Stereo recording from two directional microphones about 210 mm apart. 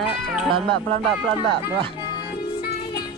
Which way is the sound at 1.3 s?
20° right (ahead or behind).